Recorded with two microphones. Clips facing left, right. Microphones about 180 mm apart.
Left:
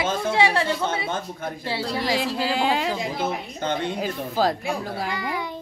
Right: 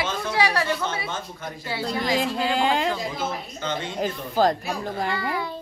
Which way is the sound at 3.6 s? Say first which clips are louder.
Left 3 dB; 55° left (ahead or behind).